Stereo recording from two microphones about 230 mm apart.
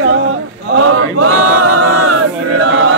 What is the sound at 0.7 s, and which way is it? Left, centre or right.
Choir, right.